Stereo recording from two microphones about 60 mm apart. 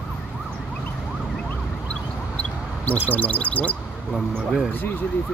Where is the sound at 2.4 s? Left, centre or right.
Left.